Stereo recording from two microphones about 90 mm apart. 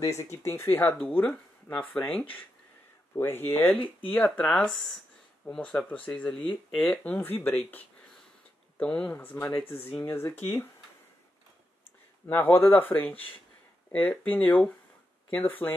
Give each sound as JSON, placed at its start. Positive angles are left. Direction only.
{"t": 0.0, "sound": "speech", "side_deg": 35}
{"t": 3.2, "sound": "speech", "side_deg": 25}
{"t": 4.2, "sound": "speech", "side_deg": 10}
{"t": 7.0, "sound": "speech", "side_deg": 20}
{"t": 12.3, "sound": "speech", "side_deg": 20}
{"t": 14.3, "sound": "speech", "side_deg": 15}